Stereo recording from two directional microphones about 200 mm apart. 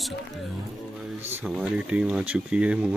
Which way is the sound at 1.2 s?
5° right (ahead or behind).